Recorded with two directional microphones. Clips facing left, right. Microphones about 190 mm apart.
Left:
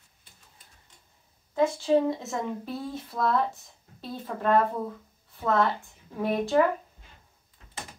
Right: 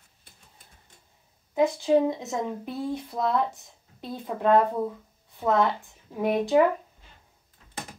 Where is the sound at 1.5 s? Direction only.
15° right (ahead or behind).